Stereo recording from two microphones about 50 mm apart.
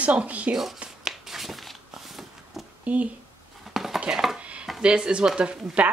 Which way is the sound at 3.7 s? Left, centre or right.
Centre.